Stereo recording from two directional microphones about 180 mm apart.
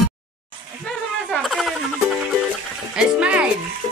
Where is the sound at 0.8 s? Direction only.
Centre (ahead or behind).